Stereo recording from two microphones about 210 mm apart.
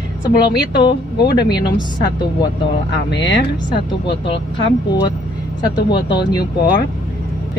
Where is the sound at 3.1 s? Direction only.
60° left (ahead or behind).